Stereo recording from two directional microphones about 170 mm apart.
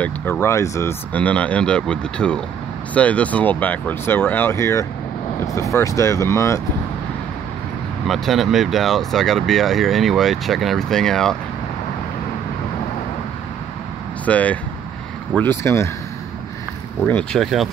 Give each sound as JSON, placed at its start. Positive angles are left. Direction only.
{"t": 0.0, "sound": "speech", "side_deg": 10}
{"t": 8.1, "sound": "speech", "side_deg": 0}
{"t": 14.2, "sound": "speech", "side_deg": 10}
{"t": 17.1, "sound": "speech", "side_deg": 5}